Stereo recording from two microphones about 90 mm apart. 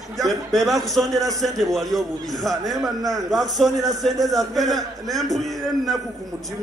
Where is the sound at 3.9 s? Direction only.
Centre (ahead or behind).